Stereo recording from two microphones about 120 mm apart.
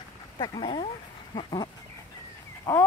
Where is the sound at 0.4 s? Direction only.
40° left (ahead or behind).